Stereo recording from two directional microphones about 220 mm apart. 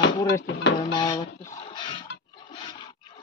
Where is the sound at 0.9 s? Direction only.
20° left (ahead or behind).